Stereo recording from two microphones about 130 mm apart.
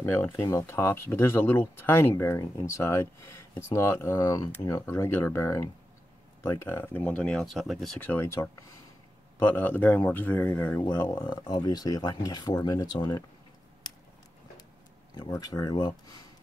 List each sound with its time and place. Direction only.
0.0 s speech: 20° left (ahead or behind); by 8.0 s centre (ahead or behind)
8.0 s speech: 15° left (ahead or behind)
11.1 s speech: 35° left (ahead or behind)
15.1 s speech: 30° left (ahead or behind)